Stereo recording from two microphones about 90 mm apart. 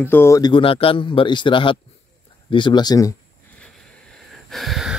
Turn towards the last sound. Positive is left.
turn(degrees=-5)  # may be behind; listen again after turning